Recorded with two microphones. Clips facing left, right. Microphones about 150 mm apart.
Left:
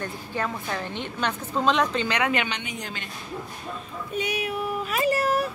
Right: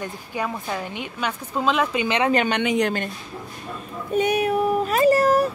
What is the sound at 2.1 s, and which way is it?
Speech, 35° right (ahead or behind).